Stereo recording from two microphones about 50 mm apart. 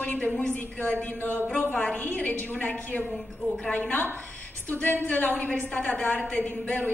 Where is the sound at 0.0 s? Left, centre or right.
Left.